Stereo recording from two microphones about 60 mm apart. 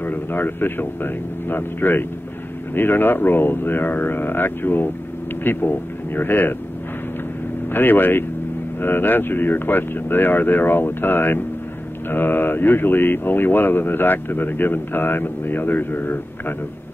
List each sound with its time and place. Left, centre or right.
0.0 s speech: left
7.7 s speech: left